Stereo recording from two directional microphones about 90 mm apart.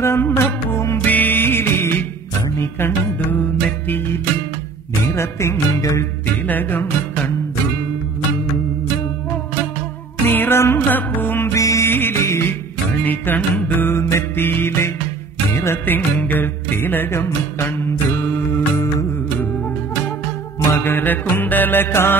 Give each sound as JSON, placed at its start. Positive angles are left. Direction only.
{"t": 0.0, "sound": "music", "side_deg": 30}
{"t": 6.4, "sound": "music", "side_deg": 20}
{"t": 10.2, "sound": "music", "side_deg": 25}
{"t": 11.6, "sound": "music", "side_deg": 35}
{"t": 11.9, "sound": "music", "side_deg": 25}
{"t": 20.7, "sound": "music", "side_deg": 25}